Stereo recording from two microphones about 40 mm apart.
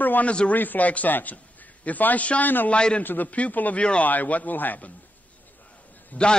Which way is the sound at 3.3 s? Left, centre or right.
Left.